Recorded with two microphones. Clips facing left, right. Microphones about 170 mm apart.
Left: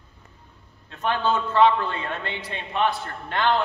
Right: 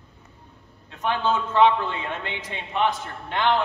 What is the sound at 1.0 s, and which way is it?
A man's voice, 15° right (ahead or behind).